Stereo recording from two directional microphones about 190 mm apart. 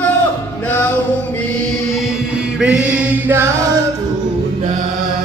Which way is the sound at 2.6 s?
5° right (ahead or behind).